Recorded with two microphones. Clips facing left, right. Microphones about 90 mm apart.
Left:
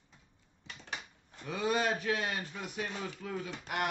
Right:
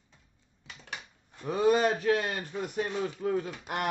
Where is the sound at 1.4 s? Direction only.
45° right (ahead or behind).